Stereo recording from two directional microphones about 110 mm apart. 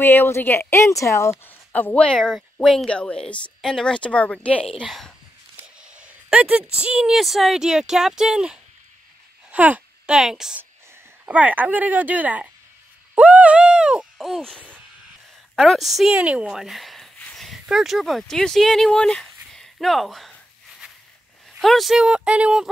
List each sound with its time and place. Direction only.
0.0 s speech: 20° left (ahead or behind)
1.3 s a woman's voice: 15° left (ahead or behind)
5.8 s a child's voice: 10° right (ahead or behind)
11.2 s speech: 15° right (ahead or behind)
13.1 s hoot: 15° right (ahead or behind)
15.5 s a woman's voice: centre (ahead or behind)
21.5 s speech: centre (ahead or behind)